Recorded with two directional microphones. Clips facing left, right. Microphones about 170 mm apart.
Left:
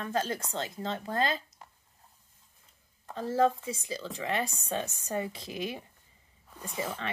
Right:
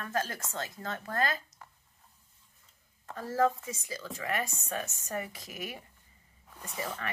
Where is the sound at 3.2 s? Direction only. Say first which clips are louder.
Left 2 dB; 25° left (ahead or behind).